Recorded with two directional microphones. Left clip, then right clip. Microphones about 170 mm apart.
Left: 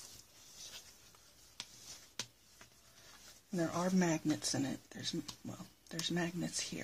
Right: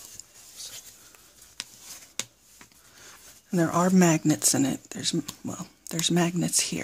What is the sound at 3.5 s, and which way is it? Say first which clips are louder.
Speech: right 13 dB; 45° right (ahead or behind).